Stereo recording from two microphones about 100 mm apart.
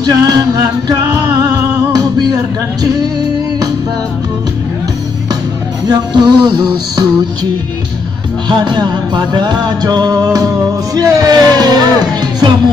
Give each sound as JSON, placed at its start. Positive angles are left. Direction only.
{"t": 0.0, "sound": "music", "side_deg": -40}
{"t": 5.9, "sound": "music", "side_deg": -45}
{"t": 8.5, "sound": "music", "side_deg": -50}
{"t": 11.0, "sound": "speech", "side_deg": -40}